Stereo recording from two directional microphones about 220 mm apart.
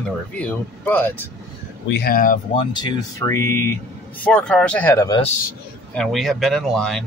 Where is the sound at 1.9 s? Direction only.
45° left (ahead or behind).